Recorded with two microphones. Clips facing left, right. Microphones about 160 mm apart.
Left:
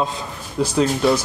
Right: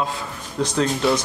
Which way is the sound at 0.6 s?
10° left (ahead or behind).